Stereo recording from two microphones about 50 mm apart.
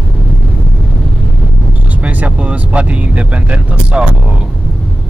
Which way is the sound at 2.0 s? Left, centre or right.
Right.